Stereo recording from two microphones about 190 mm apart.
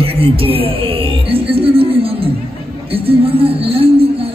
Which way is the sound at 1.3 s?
30° right (ahead or behind).